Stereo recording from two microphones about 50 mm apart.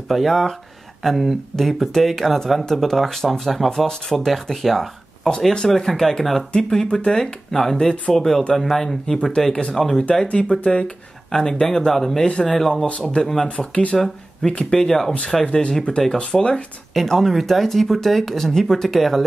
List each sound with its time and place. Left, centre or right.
0.1 s speech: centre; by 9.8 s left
9.8 s speech: centre
10.2 s speech: left; by 12.8 s centre
12.8 s speech: left
13.3 s speech: centre
14.4 s speech: centre
16.9 s speech: centre